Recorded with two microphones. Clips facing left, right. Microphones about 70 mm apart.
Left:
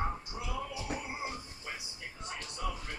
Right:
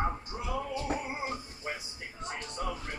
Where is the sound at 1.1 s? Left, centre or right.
Right.